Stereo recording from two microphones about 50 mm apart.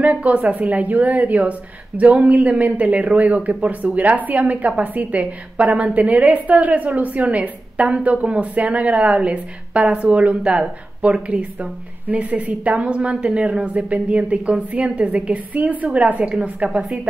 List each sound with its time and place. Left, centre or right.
0.0 s a woman's voice: right